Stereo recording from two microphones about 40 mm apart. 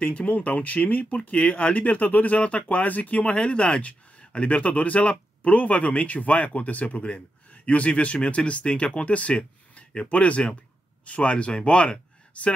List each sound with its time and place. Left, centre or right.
0.0 s speech: left
3.3 s speech: left
9.4 s a sound: left
10.1 s speech: left